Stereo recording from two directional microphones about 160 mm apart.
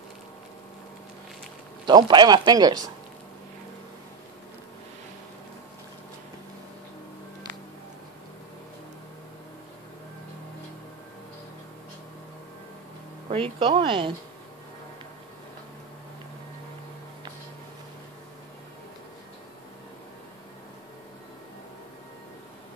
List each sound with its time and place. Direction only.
1.9 s speech: 25° right (ahead or behind)
13.3 s a woman's voice: 30° right (ahead or behind)